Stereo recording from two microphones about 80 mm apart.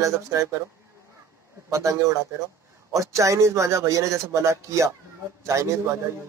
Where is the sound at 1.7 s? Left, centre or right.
Right.